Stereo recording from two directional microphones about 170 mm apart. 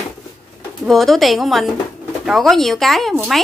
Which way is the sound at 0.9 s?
Centre (ahead or behind).